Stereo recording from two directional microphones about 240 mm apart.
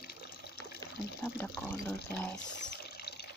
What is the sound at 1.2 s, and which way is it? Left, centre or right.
Speech, centre.